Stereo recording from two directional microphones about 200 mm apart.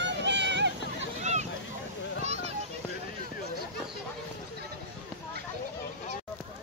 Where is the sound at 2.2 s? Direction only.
30° right (ahead or behind).